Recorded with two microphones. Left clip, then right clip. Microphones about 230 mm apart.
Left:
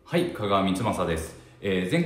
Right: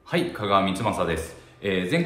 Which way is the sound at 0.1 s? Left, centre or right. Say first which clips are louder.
Right 2 dB; centre.